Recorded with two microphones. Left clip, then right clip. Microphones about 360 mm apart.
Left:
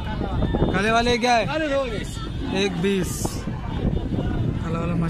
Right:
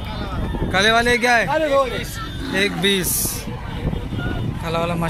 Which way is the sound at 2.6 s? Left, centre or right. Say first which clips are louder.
Right 5 dB; centre.